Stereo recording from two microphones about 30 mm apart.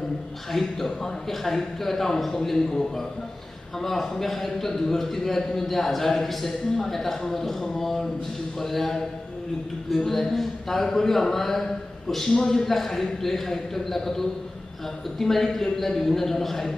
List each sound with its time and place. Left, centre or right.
0.5 s a man's voice: centre